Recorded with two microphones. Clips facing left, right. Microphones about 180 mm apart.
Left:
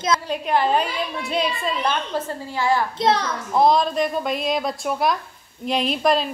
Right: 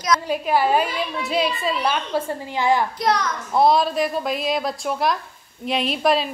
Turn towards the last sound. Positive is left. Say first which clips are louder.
# even
turn(degrees=0)  # may be behind; listen again after turning